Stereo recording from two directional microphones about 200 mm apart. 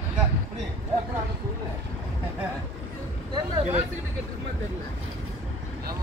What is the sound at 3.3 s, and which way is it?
Speech, 30° right (ahead or behind).